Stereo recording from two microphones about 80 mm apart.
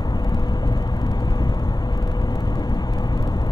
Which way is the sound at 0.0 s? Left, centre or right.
Left.